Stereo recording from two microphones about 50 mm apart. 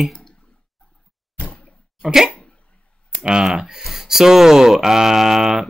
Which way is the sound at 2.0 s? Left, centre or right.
Centre.